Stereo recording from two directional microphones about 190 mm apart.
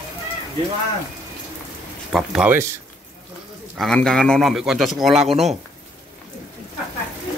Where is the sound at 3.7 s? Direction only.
Centre (ahead or behind).